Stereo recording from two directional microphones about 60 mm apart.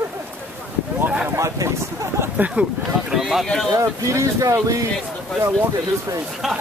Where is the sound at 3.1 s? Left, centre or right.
Centre.